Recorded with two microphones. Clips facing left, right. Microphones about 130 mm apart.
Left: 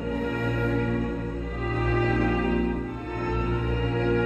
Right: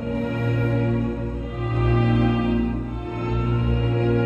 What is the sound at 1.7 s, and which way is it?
Music, 15° right (ahead or behind).